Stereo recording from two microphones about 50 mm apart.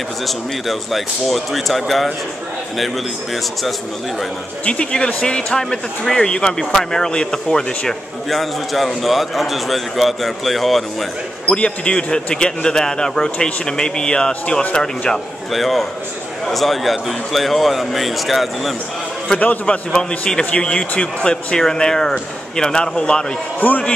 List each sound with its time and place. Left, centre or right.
0.7 s a man's voice: centre
4.6 s a man's voice: left
8.3 s a man's voice: centre
11.4 s a man's voice: left
15.5 s a man's voice: centre
19.3 s a man's voice: left
19.6 s a man's voice: centre
23.6 s a man's voice: left